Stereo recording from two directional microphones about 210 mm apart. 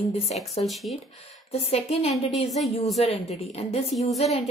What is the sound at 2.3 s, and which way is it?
Speech, centre (ahead or behind).